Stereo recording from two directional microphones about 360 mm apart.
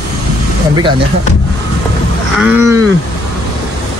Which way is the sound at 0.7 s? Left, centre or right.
Centre.